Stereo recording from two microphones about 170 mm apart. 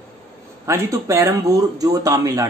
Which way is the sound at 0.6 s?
15° right (ahead or behind).